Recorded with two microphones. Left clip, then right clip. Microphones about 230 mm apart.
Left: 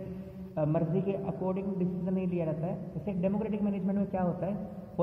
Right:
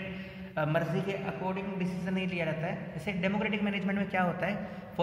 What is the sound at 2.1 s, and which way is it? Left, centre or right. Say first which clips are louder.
A man's voice: right 2 dB; right.